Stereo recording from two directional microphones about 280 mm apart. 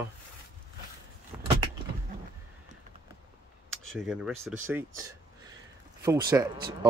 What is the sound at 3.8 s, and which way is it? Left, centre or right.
Speech, centre.